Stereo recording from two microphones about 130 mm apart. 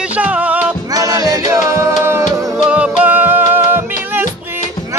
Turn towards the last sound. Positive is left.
turn(degrees=-15)  # may be behind; listen again after turning